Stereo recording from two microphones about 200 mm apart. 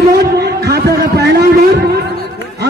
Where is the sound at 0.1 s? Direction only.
55° right (ahead or behind).